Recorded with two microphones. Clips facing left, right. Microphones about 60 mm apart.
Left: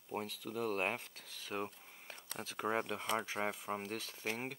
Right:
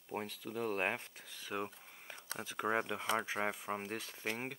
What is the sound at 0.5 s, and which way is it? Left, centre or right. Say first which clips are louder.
Speech: even; right.